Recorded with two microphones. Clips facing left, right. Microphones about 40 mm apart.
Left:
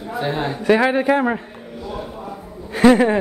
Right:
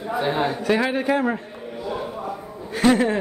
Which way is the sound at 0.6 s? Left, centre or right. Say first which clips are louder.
Left 5 dB; centre.